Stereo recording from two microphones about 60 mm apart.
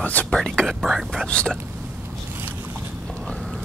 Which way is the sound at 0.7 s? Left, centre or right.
Centre.